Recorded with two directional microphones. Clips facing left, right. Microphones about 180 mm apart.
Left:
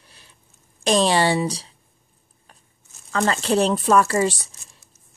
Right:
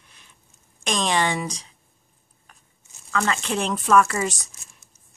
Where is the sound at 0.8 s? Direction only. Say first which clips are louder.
Left 5 dB; 35° left (ahead or behind).